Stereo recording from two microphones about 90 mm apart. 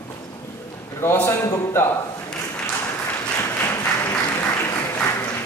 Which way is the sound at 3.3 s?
30° left (ahead or behind).